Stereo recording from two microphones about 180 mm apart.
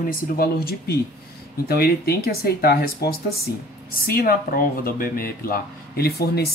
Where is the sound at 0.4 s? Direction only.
55° left (ahead or behind).